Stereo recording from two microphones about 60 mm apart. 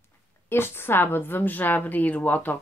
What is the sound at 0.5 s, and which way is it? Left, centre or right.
Speech, left.